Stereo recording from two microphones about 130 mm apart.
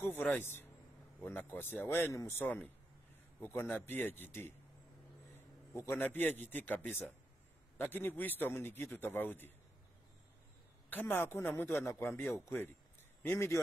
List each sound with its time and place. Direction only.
0.2 s a man's voice: 15° left (ahead or behind)
5.8 s a man's voice: 15° left (ahead or behind)
10.9 s a man's voice: 15° left (ahead or behind)